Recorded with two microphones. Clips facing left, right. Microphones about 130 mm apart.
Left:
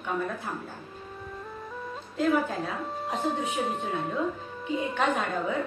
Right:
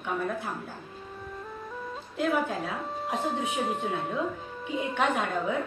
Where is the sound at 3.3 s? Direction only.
Centre (ahead or behind).